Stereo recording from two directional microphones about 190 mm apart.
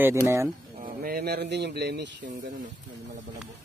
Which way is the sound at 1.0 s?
55° right (ahead or behind).